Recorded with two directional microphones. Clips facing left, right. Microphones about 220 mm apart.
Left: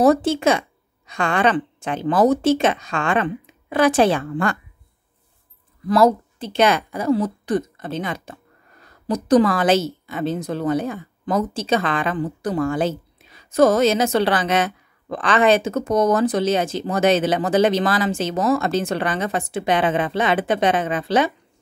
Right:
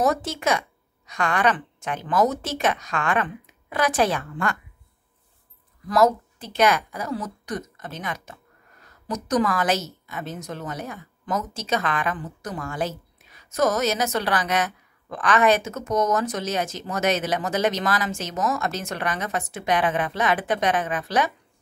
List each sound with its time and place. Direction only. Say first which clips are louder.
0.0 s a woman's voice: left 8 dB; 30° left (ahead or behind)
5.9 s a woman's voice: left 4 dB; 30° left (ahead or behind)